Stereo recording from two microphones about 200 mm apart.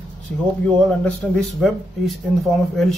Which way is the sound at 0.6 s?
5° left (ahead or behind).